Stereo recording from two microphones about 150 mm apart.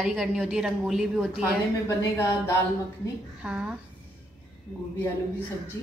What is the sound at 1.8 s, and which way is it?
Speech, 20° left (ahead or behind).